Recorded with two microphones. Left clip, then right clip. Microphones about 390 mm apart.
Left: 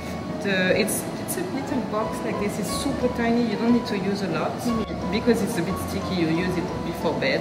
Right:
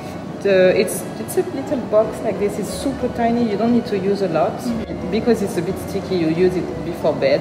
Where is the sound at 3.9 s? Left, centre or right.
Centre.